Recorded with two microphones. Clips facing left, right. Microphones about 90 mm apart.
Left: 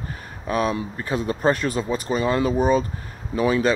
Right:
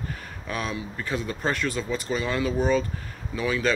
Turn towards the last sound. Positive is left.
turn(degrees=30)  # may be behind; listen again after turning